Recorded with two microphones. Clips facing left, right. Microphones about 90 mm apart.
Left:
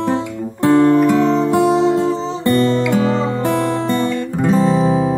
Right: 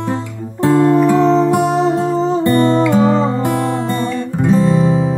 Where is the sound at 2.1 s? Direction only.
45° right (ahead or behind).